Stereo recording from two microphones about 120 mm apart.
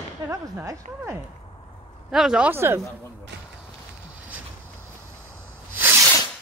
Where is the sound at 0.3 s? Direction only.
25° right (ahead or behind).